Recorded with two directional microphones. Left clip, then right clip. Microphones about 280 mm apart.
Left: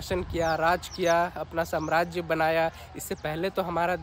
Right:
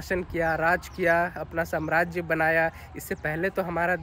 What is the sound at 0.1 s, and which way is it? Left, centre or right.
Speech, centre.